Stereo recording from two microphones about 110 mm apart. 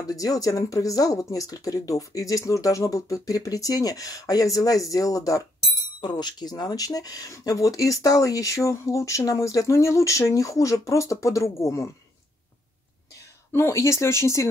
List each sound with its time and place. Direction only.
0.0 s speech: 30° left (ahead or behind)
5.9 s speech: 45° left (ahead or behind); by 11.9 s 25° left (ahead or behind)
13.5 s speech: 25° left (ahead or behind)